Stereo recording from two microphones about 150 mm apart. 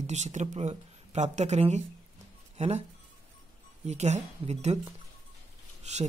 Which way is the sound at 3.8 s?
50° right (ahead or behind).